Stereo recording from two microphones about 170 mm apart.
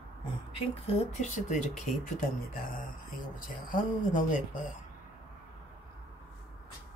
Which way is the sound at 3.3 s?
50° left (ahead or behind).